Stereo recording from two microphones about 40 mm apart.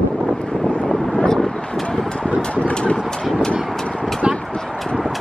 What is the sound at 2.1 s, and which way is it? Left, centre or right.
Vehicle, left.